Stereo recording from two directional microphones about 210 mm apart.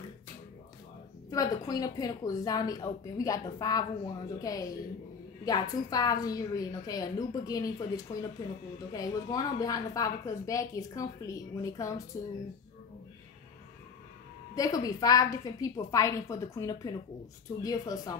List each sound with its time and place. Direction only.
1.3 s a woman's voice: 15° left (ahead or behind)
14.5 s a woman's voice: 15° left (ahead or behind)